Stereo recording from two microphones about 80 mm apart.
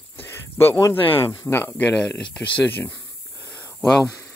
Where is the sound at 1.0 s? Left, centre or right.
Left.